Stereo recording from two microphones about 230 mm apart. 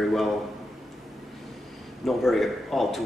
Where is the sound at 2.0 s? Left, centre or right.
Centre.